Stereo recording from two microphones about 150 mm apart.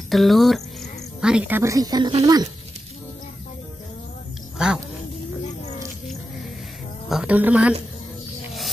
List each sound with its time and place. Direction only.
0.1 s speech: centre (ahead or behind)
1.6 s speech: 20° right (ahead or behind)
4.6 s cat: 5° right (ahead or behind)
7.1 s a woman's voice: 5° right (ahead or behind)